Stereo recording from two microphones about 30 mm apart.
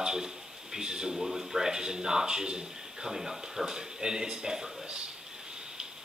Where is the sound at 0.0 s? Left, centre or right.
Right.